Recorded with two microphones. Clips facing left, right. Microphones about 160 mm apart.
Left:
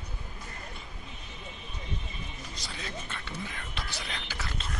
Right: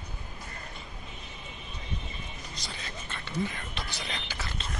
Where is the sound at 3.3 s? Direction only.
5° left (ahead or behind).